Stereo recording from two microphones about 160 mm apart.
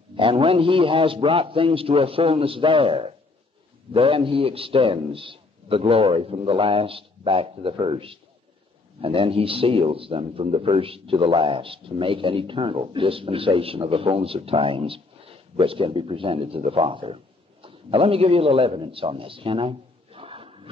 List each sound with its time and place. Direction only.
0.1 s a man's voice: 35° right (ahead or behind)